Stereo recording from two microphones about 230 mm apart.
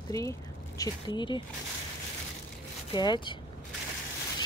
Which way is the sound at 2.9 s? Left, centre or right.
Centre.